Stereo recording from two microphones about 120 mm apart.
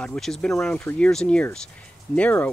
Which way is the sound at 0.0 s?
5° left (ahead or behind).